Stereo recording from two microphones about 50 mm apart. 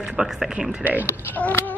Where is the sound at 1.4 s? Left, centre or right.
Left.